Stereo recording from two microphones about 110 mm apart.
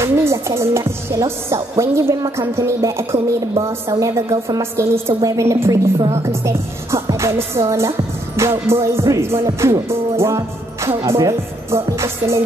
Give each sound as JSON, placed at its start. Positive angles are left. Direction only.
{"t": 0.0, "sound": "music", "side_deg": -25}